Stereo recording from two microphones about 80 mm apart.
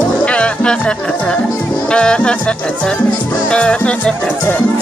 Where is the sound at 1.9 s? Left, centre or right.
Centre.